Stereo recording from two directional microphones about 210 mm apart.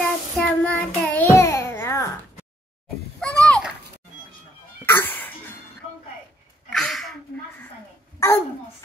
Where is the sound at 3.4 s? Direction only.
5° left (ahead or behind).